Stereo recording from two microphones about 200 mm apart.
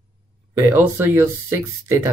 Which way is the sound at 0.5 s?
10° right (ahead or behind).